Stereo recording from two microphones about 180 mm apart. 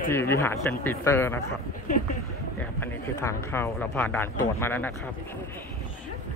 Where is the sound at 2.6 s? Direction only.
10° left (ahead or behind).